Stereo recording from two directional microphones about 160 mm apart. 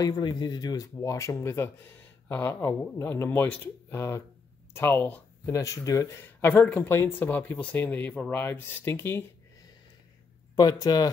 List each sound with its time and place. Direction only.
0.0 s speech: 25° left (ahead or behind)
10.5 s speech: 25° left (ahead or behind)